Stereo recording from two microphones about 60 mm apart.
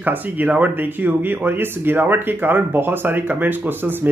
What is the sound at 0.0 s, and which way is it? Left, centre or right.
Speech, right.